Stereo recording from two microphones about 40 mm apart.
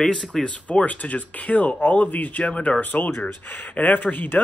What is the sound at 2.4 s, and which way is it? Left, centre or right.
Speech, left.